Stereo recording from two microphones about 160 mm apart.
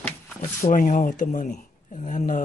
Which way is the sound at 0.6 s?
55° left (ahead or behind).